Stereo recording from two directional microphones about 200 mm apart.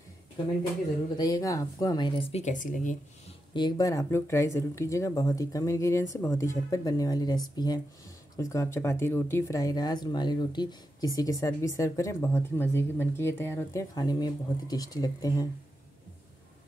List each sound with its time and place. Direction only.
1.1 s speech: 20° left (ahead or behind); by 3.3 s 40° left (ahead or behind)
3.5 s speech: 20° left (ahead or behind)